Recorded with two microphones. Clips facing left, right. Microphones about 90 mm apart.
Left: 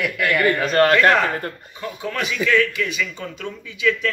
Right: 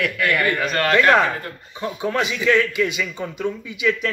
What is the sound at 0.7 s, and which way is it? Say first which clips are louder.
Speech: left 5 dB; 35° left (ahead or behind).